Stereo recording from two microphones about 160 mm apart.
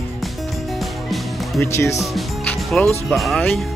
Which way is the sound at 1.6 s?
15° left (ahead or behind).